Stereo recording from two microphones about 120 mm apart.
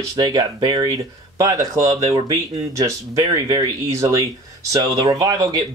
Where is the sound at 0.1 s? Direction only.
30° right (ahead or behind).